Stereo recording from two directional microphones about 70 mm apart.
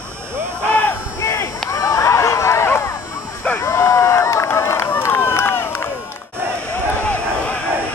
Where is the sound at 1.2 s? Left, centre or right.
Left.